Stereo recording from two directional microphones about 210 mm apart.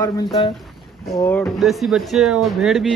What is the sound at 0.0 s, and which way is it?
Speech, 20° left (ahead or behind).